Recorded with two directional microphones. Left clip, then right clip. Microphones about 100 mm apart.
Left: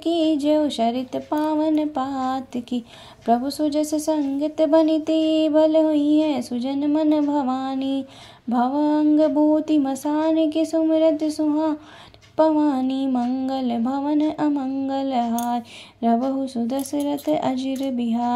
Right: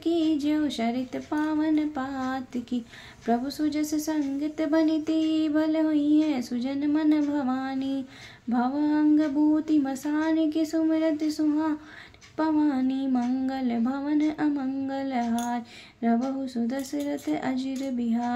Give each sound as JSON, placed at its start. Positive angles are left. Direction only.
{"t": 0.0, "sound": "speech", "side_deg": 35}